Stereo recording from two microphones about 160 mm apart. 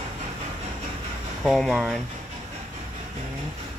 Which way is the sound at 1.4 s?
Centre (ahead or behind).